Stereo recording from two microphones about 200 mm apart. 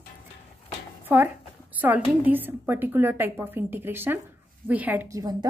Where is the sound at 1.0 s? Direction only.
10° right (ahead or behind).